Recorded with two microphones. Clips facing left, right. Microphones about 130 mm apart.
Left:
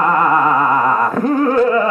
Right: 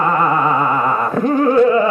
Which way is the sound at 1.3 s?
20° right (ahead or behind).